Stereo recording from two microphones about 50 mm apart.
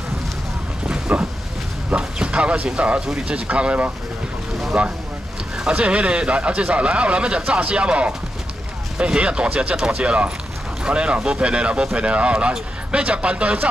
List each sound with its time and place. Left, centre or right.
0.8 s vehicle: centre
1.9 s speech: centre